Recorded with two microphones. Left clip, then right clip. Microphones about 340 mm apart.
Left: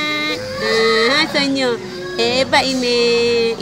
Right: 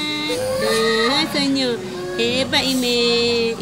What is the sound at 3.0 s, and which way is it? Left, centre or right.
Speech, centre.